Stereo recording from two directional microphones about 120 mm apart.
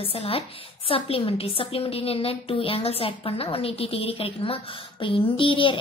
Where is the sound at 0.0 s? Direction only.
50° left (ahead or behind).